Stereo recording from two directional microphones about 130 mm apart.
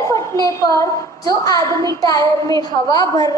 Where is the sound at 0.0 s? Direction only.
25° left (ahead or behind).